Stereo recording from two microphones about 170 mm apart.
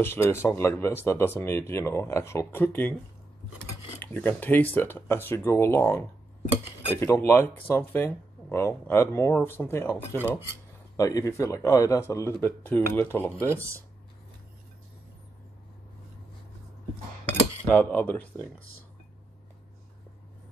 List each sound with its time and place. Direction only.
0.0 s speech: 15° left (ahead or behind)
4.0 s speech: 10° left (ahead or behind)
17.3 s cutlery: 10° left (ahead or behind)